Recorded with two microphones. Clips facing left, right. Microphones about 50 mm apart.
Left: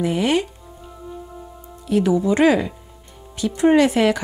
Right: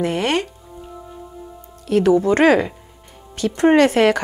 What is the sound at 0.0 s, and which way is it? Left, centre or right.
Speech, right.